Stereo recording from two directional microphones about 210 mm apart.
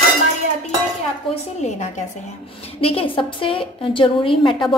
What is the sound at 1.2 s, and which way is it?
A woman's voice, 30° left (ahead or behind).